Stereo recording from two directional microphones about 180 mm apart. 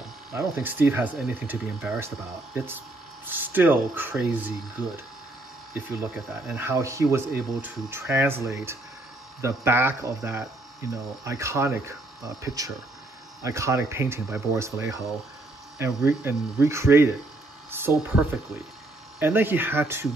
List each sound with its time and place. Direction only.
0.3 s speech: 15° right (ahead or behind)
6.4 s speech: 10° right (ahead or behind)
16.1 s speech: 15° right (ahead or behind)
17.6 s a sound: 10° right (ahead or behind)
19.1 s speech: 10° right (ahead or behind)